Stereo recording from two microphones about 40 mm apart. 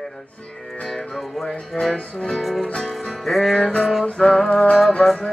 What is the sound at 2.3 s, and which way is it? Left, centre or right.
Music, centre.